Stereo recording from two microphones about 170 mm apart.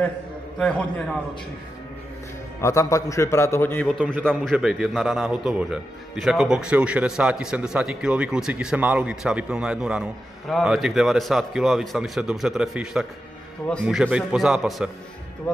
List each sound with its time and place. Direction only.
0.6 s a man's voice: 5° left (ahead or behind)
2.6 s a man's voice: 20° left (ahead or behind)
4.0 s a man's voice: 10° right (ahead or behind)
15.5 s a man's voice: 10° left (ahead or behind)